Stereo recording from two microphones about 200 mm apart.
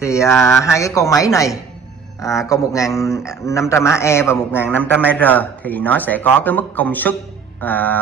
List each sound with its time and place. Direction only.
0.0 s a man's voice: 15° left (ahead or behind)